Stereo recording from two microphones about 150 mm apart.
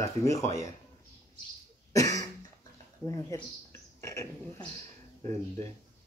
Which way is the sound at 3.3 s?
20° left (ahead or behind).